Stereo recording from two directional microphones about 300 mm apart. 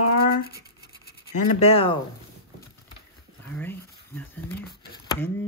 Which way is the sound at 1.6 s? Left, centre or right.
Centre.